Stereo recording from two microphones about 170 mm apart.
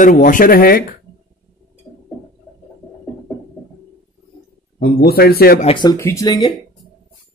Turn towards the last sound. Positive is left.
turn(degrees=25)  # may be behind; listen again after turning